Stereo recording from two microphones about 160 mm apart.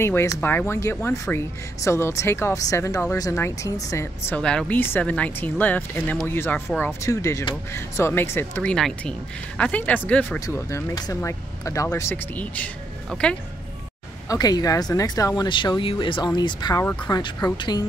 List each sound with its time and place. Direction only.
0.0 s speech: 15° left (ahead or behind)
4.4 s speech: 5° left (ahead or behind)
8.7 s speech: 5° left (ahead or behind)
14.3 s speech: 20° left (ahead or behind)
16.8 s speech: 10° left (ahead or behind)
17.1 s speech: 25° left (ahead or behind)